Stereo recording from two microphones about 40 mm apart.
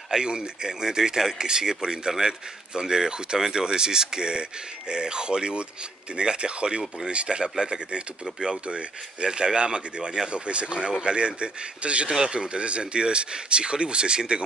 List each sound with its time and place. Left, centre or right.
0.1 s speech: right